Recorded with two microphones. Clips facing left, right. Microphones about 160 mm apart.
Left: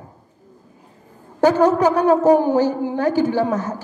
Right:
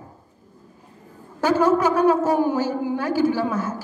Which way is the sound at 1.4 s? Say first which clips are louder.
Left 4 dB; 40° left (ahead or behind).